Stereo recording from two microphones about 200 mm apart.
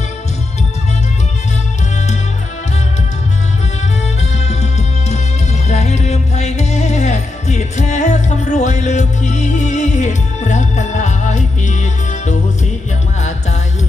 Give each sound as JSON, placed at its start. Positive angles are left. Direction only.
{"t": 4.2, "sound": "music", "side_deg": 35}